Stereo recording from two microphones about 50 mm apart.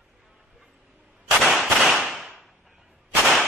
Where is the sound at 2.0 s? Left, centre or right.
Centre.